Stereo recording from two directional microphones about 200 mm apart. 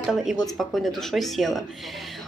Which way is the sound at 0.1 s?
Centre (ahead or behind).